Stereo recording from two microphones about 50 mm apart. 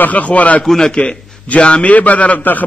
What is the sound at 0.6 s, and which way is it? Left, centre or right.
Speech, centre.